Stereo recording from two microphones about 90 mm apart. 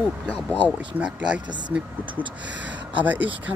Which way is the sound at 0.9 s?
15° right (ahead or behind).